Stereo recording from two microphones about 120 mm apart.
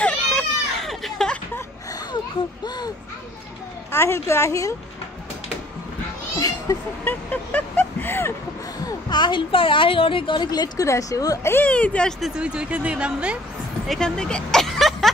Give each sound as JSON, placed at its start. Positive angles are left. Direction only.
{"t": 0.0, "sound": "baby cry", "side_deg": 5}
{"t": 3.9, "sound": "a woman's voice", "side_deg": 20}
{"t": 6.3, "sound": "cat", "side_deg": 30}
{"t": 7.1, "sound": "speech", "side_deg": 15}
{"t": 8.8, "sound": "a woman's voice", "side_deg": 40}
{"t": 11.5, "sound": "speech", "side_deg": 10}
{"t": 12.2, "sound": "speech", "side_deg": -10}
{"t": 13.8, "sound": "speech", "side_deg": 5}